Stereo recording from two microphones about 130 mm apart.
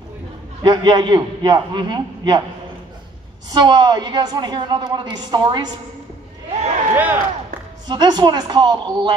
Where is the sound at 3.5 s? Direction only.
35° right (ahead or behind).